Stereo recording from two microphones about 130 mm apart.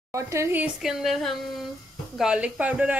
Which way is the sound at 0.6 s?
Centre (ahead or behind).